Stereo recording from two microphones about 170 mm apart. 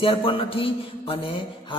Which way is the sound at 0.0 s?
30° left (ahead or behind).